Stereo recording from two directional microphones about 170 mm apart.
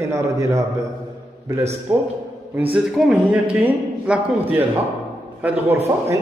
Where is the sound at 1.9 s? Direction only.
5° right (ahead or behind).